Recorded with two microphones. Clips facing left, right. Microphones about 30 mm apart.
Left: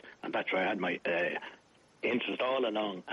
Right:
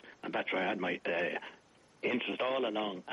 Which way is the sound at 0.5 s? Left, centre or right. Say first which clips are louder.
Left 3 dB; centre.